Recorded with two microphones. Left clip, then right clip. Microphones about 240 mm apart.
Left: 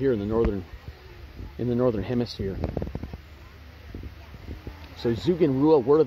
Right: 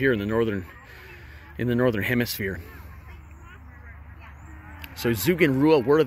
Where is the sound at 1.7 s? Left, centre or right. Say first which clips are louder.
Right 1 dB; right.